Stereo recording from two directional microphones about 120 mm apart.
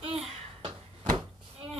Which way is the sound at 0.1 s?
50° right (ahead or behind).